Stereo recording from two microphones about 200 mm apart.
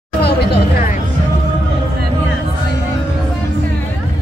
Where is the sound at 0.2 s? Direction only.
55° left (ahead or behind).